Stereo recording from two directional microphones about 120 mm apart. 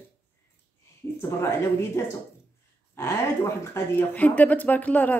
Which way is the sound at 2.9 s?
20° left (ahead or behind).